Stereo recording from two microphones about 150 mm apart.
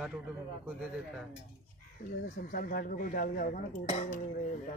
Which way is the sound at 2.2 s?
70° left (ahead or behind).